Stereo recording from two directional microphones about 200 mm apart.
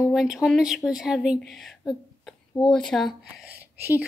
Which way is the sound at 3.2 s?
5° right (ahead or behind).